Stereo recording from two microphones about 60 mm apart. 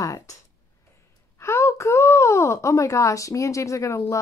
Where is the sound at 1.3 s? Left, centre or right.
Left.